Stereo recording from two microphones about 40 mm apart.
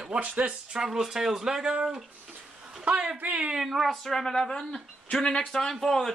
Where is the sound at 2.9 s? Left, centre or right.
Right.